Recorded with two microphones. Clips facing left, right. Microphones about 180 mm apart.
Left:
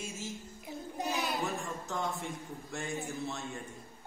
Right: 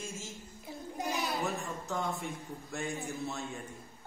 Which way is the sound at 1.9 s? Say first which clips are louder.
Right 1 dB; centre (ahead or behind).